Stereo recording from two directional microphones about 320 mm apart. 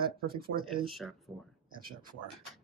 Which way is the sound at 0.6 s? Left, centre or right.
Centre.